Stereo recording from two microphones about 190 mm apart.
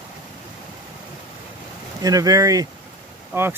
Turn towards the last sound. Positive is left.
turn(degrees=-10)  # may be behind; listen again after turning